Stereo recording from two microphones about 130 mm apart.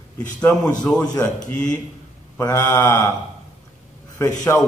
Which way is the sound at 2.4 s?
20° left (ahead or behind).